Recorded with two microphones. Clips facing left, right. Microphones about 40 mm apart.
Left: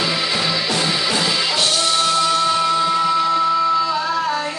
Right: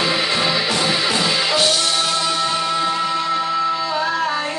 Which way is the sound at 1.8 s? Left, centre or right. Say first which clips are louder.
Left 2 dB; centre.